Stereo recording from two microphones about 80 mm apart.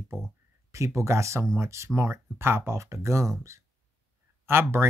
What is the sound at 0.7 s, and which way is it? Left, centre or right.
Speech, right.